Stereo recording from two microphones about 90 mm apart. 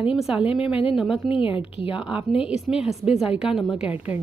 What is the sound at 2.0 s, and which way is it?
A woman's voice, 10° right (ahead or behind).